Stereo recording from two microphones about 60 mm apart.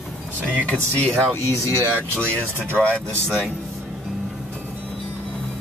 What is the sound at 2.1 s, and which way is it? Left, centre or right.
Speech, right.